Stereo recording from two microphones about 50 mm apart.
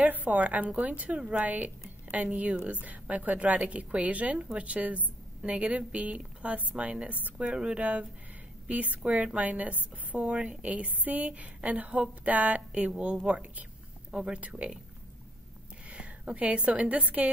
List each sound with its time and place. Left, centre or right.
0.0 s a woman's voice: right
15.9 s a woman's voice: right